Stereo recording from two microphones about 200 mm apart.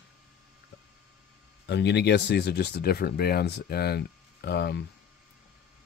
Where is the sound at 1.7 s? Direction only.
60° left (ahead or behind).